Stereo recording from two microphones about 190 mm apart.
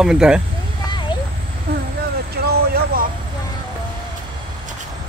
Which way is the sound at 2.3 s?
55° right (ahead or behind).